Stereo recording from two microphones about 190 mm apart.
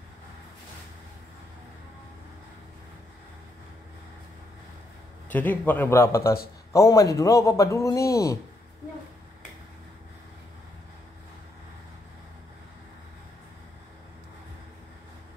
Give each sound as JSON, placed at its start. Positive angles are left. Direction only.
{"t": 5.3, "sound": "speech", "side_deg": 10}